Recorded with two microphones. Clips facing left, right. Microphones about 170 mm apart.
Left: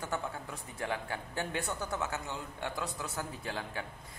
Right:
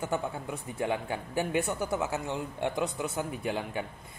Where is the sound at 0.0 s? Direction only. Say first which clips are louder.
Right 5 dB; 20° right (ahead or behind).